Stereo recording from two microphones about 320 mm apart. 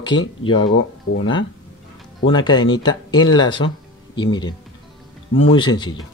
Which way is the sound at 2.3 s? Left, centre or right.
Centre.